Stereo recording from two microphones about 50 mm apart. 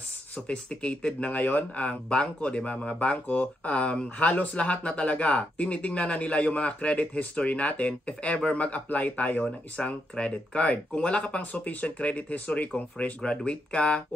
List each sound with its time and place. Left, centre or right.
0.5 s speech: left
1.8 s speech: left